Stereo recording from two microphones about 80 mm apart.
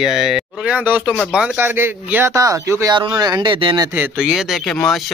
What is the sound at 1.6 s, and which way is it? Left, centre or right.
Speech, right.